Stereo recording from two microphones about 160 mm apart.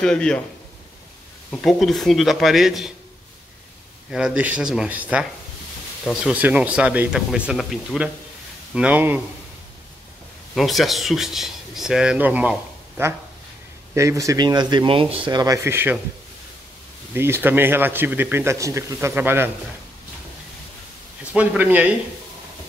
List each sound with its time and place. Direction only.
0.0 s speech: 5° left (ahead or behind)
1.5 s speech: centre (ahead or behind)
4.1 s a man's voice: 5° right (ahead or behind)
10.5 s a man's voice: centre (ahead or behind)
17.1 s a man's voice: 15° right (ahead or behind)
21.2 s a man's voice: 10° right (ahead or behind)